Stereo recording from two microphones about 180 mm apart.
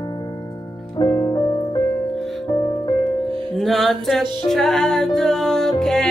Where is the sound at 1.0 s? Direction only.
20° left (ahead or behind).